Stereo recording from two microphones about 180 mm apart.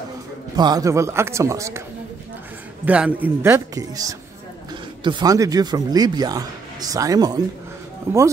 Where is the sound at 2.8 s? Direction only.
10° right (ahead or behind).